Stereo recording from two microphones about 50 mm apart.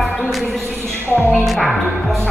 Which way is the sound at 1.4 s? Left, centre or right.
Centre.